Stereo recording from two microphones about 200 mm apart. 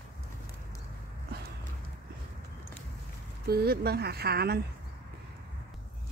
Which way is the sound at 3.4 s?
50° right (ahead or behind).